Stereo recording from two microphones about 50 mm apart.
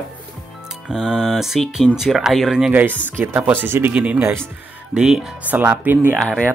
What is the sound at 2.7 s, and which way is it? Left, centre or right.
Speech, right.